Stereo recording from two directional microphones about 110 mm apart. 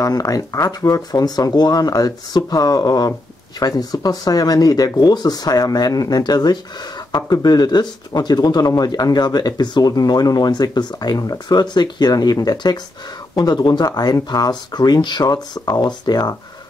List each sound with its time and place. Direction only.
0.0 s speech: 35° left (ahead or behind)